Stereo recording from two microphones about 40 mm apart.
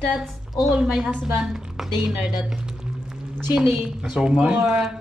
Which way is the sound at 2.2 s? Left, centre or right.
Centre.